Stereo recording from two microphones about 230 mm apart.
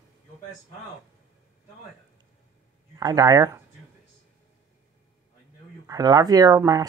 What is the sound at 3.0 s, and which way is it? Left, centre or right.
Speech, centre.